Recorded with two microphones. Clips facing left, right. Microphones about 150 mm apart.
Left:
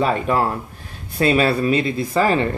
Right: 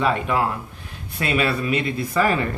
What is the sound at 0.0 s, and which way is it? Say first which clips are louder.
Speech: left 2 dB; 40° left (ahead or behind).